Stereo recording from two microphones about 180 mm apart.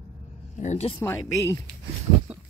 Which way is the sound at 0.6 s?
40° left (ahead or behind).